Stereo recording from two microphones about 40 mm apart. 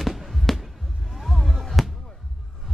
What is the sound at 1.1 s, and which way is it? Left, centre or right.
Fireworks, centre.